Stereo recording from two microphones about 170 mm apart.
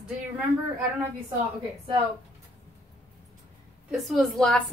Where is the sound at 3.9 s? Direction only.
Centre (ahead or behind).